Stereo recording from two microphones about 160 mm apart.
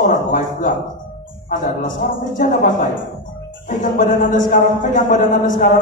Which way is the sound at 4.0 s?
55° left (ahead or behind).